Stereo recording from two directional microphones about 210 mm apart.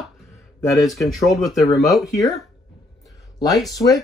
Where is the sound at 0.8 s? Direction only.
Centre (ahead or behind).